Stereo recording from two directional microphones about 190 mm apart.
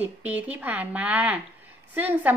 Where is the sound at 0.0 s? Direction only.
10° right (ahead or behind).